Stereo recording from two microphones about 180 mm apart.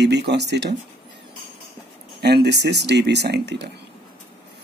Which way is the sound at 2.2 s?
65° right (ahead or behind).